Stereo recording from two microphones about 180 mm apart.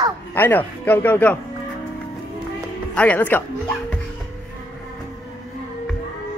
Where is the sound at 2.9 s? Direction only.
10° left (ahead or behind).